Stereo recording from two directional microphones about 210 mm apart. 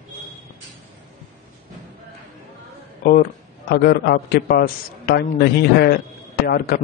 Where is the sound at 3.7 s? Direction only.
50° left (ahead or behind).